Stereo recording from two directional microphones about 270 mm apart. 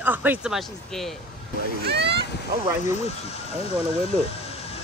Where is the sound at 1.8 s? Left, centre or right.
Right.